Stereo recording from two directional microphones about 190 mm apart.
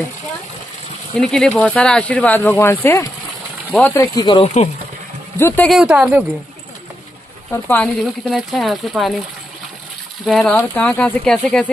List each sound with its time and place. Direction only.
1.1 s speech: centre (ahead or behind); by 4.6 s 25° left (ahead or behind)
5.7 s speech: 5° right (ahead or behind)
7.5 s speech: 10° left (ahead or behind)
10.2 s speech: 5° left (ahead or behind)